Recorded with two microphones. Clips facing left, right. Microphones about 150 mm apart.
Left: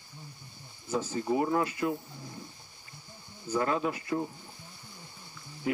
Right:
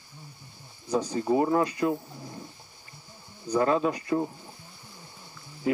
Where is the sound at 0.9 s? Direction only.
15° right (ahead or behind).